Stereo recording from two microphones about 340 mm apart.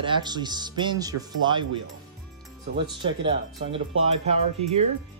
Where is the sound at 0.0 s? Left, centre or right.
Centre.